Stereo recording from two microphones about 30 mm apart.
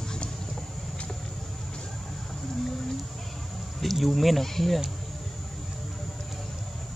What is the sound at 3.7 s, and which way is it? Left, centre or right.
Speech, centre.